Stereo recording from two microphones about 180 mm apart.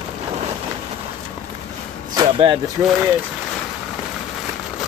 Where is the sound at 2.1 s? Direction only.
25° right (ahead or behind).